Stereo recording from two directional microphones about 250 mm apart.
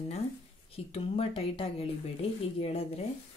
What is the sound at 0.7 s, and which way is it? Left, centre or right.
Speech, left.